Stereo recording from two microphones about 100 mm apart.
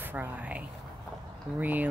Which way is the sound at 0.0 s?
20° right (ahead or behind).